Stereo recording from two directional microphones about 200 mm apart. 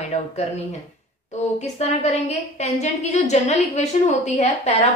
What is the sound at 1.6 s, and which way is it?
A woman's voice, 35° left (ahead or behind).